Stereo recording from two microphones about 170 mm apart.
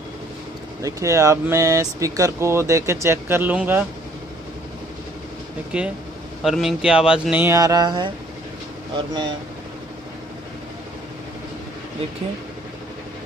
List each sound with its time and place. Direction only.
0.8 s speech: 20° right (ahead or behind)
5.7 s speech: 5° right (ahead or behind)
7.4 s a sound: 20° right (ahead or behind)